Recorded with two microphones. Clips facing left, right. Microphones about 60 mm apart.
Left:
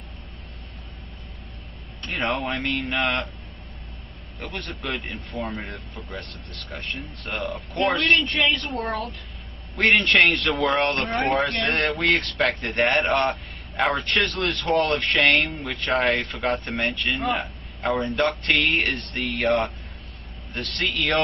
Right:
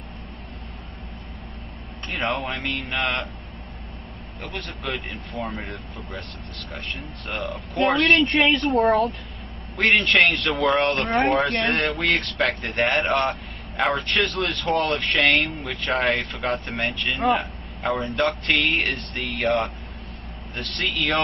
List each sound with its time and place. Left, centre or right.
2.0 s a man's voice: centre
4.4 s a man's voice: centre
8.3 s a woman's voice: right
9.8 s a man's voice: centre